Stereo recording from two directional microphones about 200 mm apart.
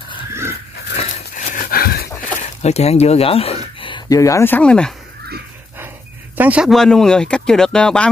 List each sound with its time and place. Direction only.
0.3 s pig: 15° right (ahead or behind)
0.9 s dog: 35° left (ahead or behind)
2.6 s speech: 30° left (ahead or behind); by 4.9 s 5° left (ahead or behind)
6.3 s speech: 5° right (ahead or behind)